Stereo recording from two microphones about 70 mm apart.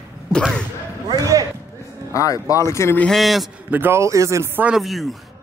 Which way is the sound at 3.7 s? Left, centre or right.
Right.